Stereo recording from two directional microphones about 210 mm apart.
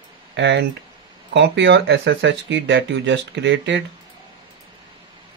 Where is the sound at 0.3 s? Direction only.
55° right (ahead or behind).